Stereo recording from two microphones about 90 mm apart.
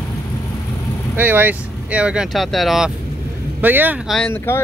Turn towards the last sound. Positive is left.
turn(degrees=30)  # may be behind; listen again after turning